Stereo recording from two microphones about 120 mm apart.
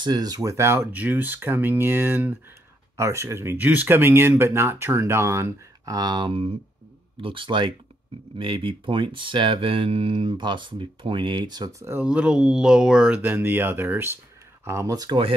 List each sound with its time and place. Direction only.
0.0 s speech: 35° right (ahead or behind)
11.8 s speech: 15° right (ahead or behind); by 15.1 s 30° right (ahead or behind)